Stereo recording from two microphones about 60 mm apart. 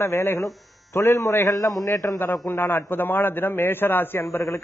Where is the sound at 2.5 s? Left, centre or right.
Left.